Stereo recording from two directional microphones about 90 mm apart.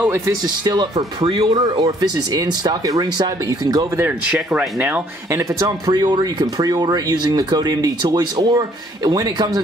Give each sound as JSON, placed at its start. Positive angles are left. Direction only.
{"t": 0.5, "sound": "speech", "side_deg": -50}
{"t": 1.8, "sound": "speech", "side_deg": -45}
{"t": 4.3, "sound": "speech", "side_deg": -10}
{"t": 4.7, "sound": "speech", "side_deg": -20}
{"t": 5.3, "sound": "speech", "side_deg": -35}